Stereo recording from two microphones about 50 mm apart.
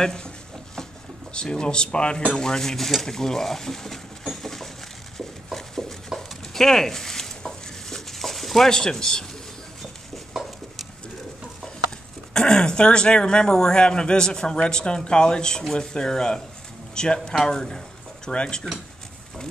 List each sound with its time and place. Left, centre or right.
0.0 s speech: centre
1.3 s speech: centre
5.1 s a sound: centre
12.4 s speech: centre